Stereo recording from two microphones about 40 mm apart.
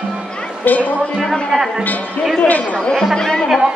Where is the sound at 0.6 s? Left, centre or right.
Left.